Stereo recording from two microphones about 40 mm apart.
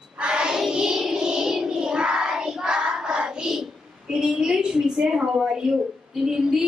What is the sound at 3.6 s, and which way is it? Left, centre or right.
A woman's voice, centre.